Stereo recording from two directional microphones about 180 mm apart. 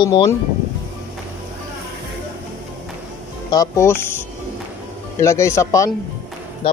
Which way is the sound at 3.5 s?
20° left (ahead or behind).